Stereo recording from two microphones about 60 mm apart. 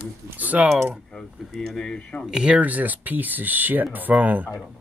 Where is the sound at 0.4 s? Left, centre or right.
Right.